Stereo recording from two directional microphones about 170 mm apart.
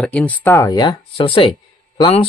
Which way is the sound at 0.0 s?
10° left (ahead or behind).